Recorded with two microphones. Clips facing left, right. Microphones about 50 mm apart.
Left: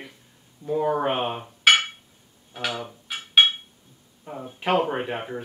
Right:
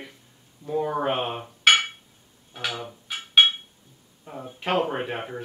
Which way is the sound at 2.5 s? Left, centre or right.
Centre.